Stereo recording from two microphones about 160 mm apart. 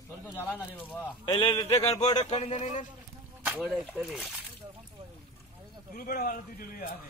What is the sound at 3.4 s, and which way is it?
Speech, 5° right (ahead or behind).